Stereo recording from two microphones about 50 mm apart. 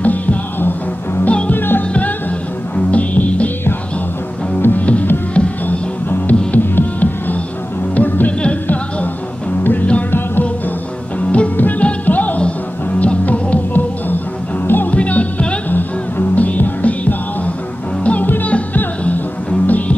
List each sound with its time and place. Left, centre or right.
0.0 s music: left
2.7 s music: left
4.6 s music: left
5.3 s music: left
6.0 s music: left
9.6 s music: left
11.1 s music: left